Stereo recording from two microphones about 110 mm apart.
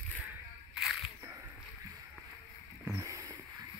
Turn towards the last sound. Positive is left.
turn(degrees=-30)  # may be behind; listen again after turning